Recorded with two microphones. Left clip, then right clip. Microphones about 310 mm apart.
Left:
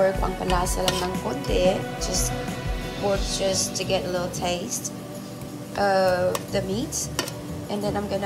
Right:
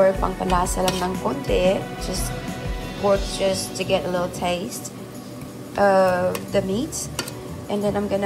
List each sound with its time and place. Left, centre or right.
0.0 s speech: centre
3.0 s speech: centre
3.5 s a woman's voice: left
3.9 s speech: centre
5.8 s speech: centre